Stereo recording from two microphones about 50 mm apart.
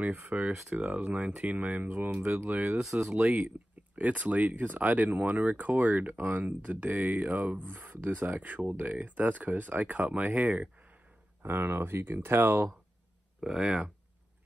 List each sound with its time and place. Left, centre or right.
0.5 s speech: right
1.9 s speech: right
2.2 s speech: right
3.9 s speech: right
11.4 s speech: right
13.4 s speech: centre